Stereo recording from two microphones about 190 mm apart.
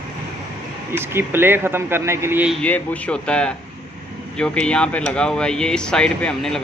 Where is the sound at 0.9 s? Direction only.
10° right (ahead or behind).